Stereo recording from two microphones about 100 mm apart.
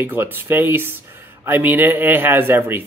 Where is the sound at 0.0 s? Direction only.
20° right (ahead or behind).